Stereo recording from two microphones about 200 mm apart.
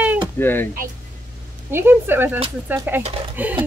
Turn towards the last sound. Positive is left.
turn(degrees=-10)  # may be behind; listen again after turning